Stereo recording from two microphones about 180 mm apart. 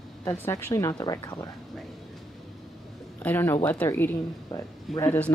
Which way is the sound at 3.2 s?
10° left (ahead or behind).